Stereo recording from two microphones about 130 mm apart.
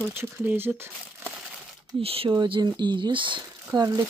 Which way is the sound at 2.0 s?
45° right (ahead or behind).